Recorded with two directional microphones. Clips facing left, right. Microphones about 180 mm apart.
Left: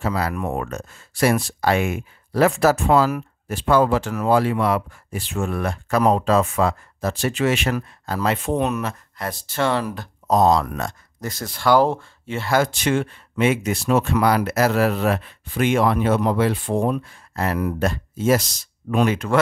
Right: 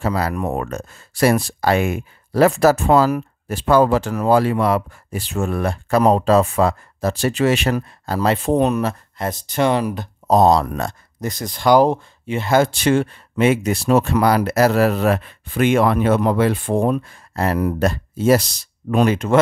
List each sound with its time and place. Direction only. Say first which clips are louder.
0.0 s speech: right 3 dB; 35° right (ahead or behind)
9.3 s speech: right 4 dB; 20° right (ahead or behind)
10.2 s speech: right 3 dB; 30° right (ahead or behind)
11.1 s speech: right 5 dB; 15° right (ahead or behind); by 17.2 s 50° right (ahead or behind)
17.4 s speech: right 3 dB; 35° right (ahead or behind)
19.1 s speech: right 4 dB; 20° right (ahead or behind)